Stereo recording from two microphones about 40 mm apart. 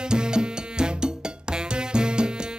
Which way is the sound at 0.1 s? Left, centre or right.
Right.